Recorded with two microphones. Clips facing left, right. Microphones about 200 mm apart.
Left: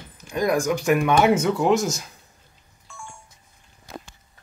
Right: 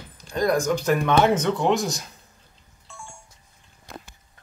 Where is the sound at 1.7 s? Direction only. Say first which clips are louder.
Left 3 dB; 35° right (ahead or behind).